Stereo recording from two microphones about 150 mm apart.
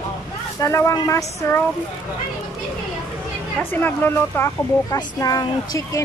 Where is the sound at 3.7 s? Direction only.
15° left (ahead or behind).